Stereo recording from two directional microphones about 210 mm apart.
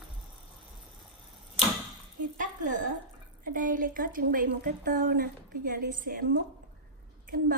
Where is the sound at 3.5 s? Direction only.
40° right (ahead or behind).